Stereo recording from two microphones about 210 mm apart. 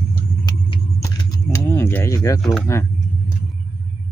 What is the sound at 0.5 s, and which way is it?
Vehicle, 20° left (ahead or behind).